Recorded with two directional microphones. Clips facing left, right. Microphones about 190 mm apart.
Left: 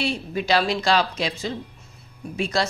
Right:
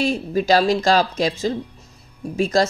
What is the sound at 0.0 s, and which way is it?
Speech, 40° right (ahead or behind).